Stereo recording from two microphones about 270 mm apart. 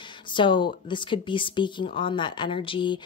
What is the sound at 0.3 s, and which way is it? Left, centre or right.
Speech, centre.